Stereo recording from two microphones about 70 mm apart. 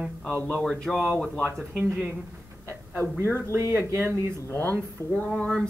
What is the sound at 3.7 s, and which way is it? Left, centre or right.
Speech, right.